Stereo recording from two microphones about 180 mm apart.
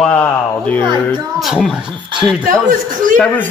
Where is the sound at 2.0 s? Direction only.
25° right (ahead or behind).